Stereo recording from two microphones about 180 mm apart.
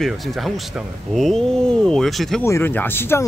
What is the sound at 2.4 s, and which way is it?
Speech, 15° left (ahead or behind).